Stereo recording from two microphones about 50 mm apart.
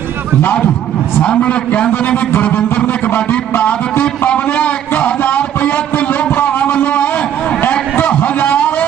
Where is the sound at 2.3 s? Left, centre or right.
Left.